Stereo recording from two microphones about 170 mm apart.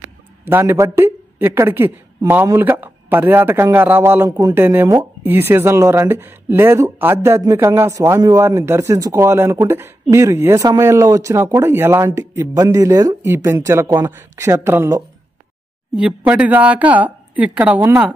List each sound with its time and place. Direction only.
0.0 s speech: 15° right (ahead or behind)
4.6 s speech: 10° right (ahead or behind)
16.0 s speech: 5° right (ahead or behind)